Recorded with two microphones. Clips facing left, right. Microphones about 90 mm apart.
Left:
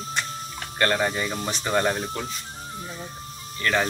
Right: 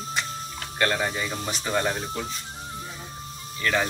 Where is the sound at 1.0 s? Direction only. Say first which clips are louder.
Left 3 dB; 5° left (ahead or behind).